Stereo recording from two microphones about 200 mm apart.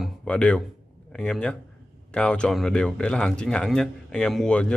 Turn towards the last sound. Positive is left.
turn(degrees=5)  # may be behind; listen again after turning